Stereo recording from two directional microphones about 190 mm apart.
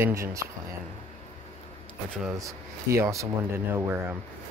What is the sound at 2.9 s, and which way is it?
Speech, 15° right (ahead or behind).